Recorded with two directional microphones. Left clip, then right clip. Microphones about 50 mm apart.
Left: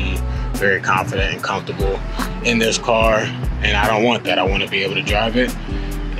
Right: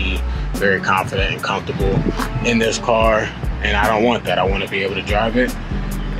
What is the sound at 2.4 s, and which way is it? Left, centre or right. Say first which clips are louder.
Speech: even; centre.